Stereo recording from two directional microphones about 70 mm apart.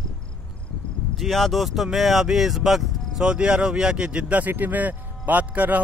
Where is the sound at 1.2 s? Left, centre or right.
Centre.